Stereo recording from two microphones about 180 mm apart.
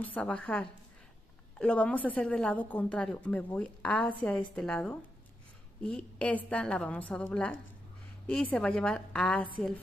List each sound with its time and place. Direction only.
0.0 s a woman's voice: 10° left (ahead or behind)